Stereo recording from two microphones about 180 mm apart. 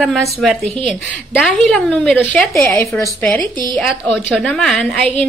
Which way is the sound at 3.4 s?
25° right (ahead or behind).